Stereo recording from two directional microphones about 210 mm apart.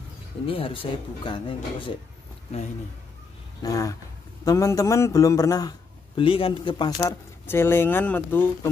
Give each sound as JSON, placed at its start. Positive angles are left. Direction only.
{"t": 0.5, "sound": "speech", "side_deg": 25}
{"t": 3.6, "sound": "a man's voice", "side_deg": 15}